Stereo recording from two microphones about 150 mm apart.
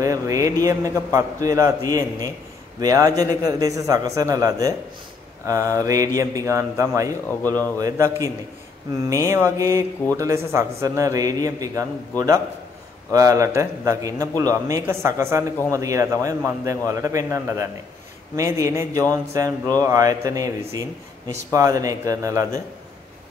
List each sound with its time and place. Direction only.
0.0 s a man's voice: 20° right (ahead or behind)
13.1 s a man's voice: 20° right (ahead or behind)